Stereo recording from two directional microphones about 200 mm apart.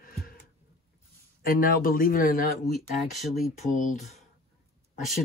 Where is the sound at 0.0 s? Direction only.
45° left (ahead or behind).